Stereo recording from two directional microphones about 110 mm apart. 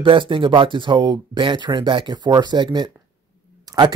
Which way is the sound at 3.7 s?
35° right (ahead or behind).